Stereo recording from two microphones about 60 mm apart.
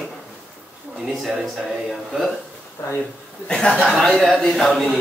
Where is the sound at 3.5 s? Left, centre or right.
Centre.